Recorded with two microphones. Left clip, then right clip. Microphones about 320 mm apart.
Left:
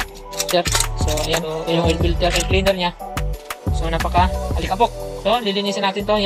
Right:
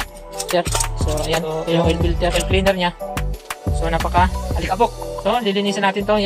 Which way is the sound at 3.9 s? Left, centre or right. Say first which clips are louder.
Even; centre.